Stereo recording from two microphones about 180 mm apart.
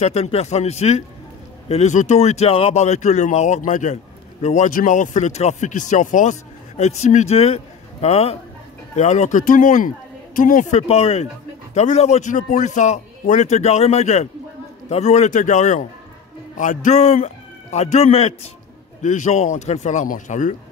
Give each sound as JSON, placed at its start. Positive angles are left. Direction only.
{"t": 0.0, "sound": "a man's voice", "side_deg": 35}